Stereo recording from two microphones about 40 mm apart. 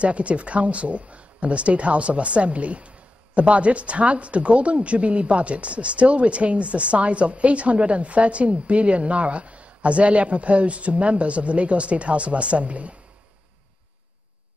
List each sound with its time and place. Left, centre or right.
0.0 s speech: right